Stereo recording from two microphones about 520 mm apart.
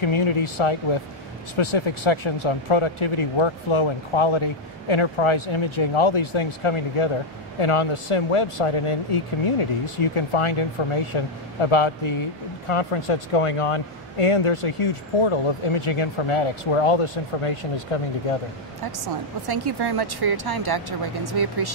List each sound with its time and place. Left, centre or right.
0.0 s speech: left
19.4 s speech: right